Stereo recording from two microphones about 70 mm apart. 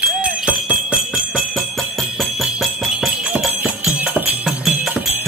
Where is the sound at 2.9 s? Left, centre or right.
Centre.